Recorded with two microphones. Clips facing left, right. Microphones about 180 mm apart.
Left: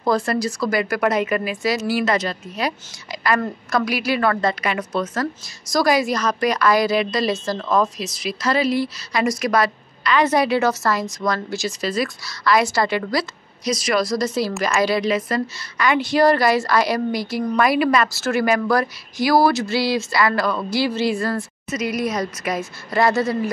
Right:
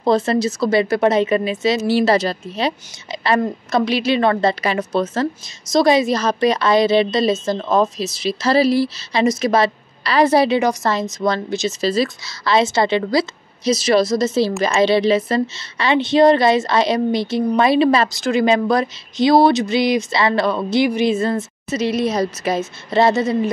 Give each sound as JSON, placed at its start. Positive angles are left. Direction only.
{"t": 0.0, "sound": "a woman's voice", "side_deg": -25}
{"t": 10.6, "sound": "a woman's voice", "side_deg": -15}